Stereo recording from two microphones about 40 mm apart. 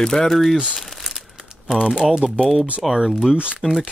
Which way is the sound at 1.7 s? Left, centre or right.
Right.